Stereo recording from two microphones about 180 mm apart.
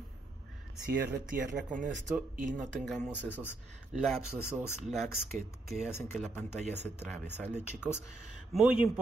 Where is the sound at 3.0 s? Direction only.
10° left (ahead or behind).